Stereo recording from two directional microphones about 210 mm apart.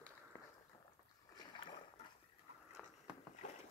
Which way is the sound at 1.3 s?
20° left (ahead or behind).